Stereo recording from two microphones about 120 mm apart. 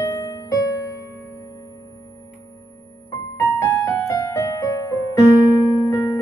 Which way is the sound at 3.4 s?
25° left (ahead or behind).